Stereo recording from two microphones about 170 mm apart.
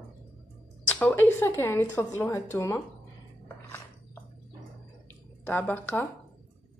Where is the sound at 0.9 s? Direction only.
10° left (ahead or behind).